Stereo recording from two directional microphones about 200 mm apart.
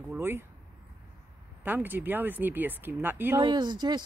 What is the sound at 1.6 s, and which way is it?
Speech, 10° right (ahead or behind).